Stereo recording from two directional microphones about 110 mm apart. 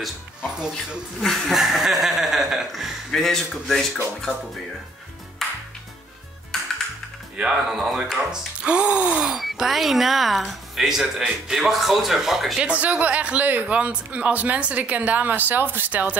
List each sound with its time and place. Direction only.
1.2 s chuckle: 5° left (ahead or behind)
5.4 s music: centre (ahead or behind)
7.3 s speech: 5° right (ahead or behind)